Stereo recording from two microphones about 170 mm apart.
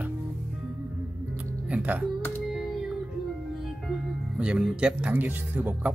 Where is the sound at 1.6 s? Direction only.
10° right (ahead or behind).